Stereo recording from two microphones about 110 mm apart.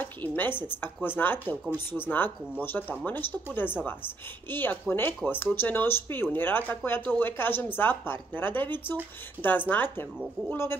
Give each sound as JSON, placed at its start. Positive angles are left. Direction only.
{"t": 0.4, "sound": "speech", "side_deg": 20}